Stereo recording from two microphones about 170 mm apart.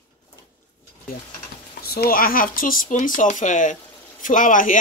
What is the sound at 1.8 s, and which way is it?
Speech, 65° left (ahead or behind).